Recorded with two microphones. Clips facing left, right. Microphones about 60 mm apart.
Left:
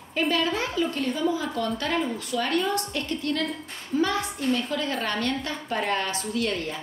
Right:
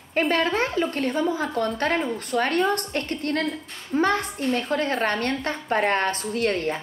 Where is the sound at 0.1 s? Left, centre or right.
Right.